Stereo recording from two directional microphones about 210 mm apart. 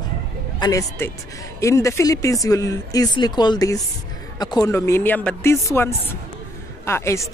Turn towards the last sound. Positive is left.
turn(degrees=10)  # may be behind; listen again after turning